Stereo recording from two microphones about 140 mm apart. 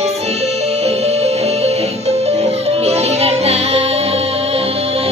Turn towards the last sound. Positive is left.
turn(degrees=-45)  # may be behind; listen again after turning